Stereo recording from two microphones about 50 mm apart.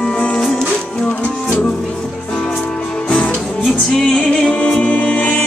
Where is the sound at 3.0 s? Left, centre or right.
Left.